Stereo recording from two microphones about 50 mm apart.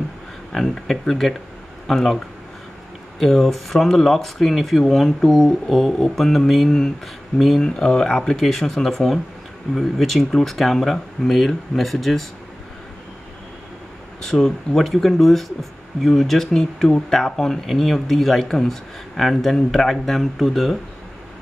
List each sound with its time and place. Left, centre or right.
0.5 s speech: centre
3.2 s speech: centre
14.2 s speech: centre